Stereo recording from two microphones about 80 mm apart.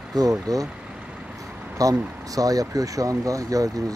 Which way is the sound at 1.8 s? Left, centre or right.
Right.